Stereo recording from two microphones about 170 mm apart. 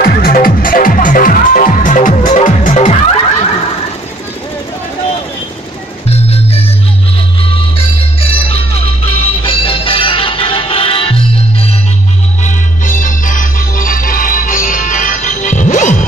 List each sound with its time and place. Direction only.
0.0 s music: 55° left (ahead or behind); by 3.5 s 40° left (ahead or behind)
6.0 s music: 35° left (ahead or behind)
8.8 s music: 35° left (ahead or behind)
12.4 s music: 50° left (ahead or behind)